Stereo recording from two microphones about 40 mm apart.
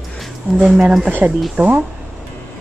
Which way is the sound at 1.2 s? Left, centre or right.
Right.